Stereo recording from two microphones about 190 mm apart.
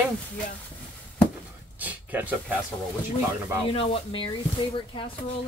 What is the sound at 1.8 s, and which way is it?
Speech, 10° right (ahead or behind).